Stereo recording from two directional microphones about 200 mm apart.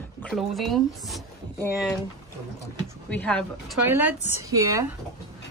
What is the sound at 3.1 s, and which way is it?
Speech, 5° left (ahead or behind).